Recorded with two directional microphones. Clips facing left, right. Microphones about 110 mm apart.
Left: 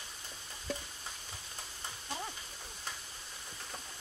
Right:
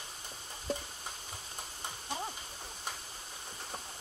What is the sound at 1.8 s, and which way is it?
Horse, 25° right (ahead or behind).